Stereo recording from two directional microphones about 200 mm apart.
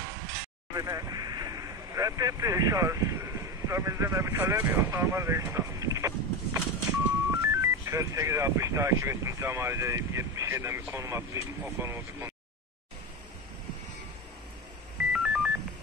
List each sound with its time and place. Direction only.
0.7 s speech: 20° right (ahead or behind)
15.1 s music: 5° right (ahead or behind)